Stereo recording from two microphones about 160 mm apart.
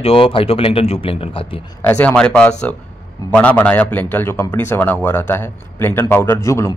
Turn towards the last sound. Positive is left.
turn(degrees=20)  # may be behind; listen again after turning